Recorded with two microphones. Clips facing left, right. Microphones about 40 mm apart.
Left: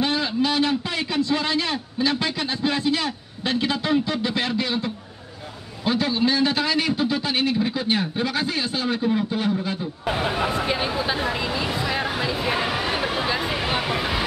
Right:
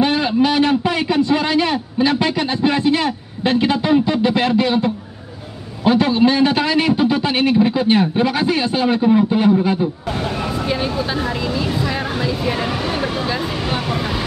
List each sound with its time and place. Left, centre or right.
0.0 s a man's voice: right
8.9 s a man's voice: right
10.0 s speech: centre